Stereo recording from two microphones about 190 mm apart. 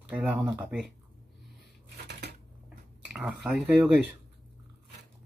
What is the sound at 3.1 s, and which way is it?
Speech, 5° right (ahead or behind).